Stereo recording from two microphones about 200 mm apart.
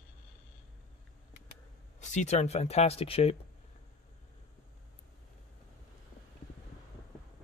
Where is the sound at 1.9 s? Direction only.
35° left (ahead or behind).